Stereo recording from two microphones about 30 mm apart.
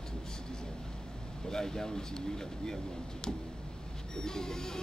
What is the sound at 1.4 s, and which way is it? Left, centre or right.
Speech, centre.